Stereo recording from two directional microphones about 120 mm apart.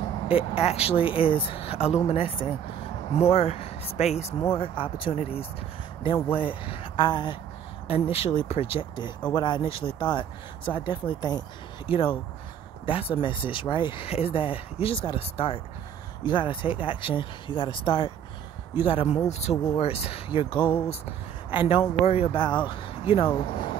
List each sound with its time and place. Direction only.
0.3 s speech: 55° left (ahead or behind)
3.2 s speech: 60° left (ahead or behind)
4.6 s speech: 50° left (ahead or behind)
7.9 s speech: 55° left (ahead or behind)